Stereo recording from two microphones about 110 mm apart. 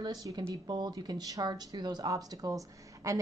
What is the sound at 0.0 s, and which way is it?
Speech, 35° right (ahead or behind).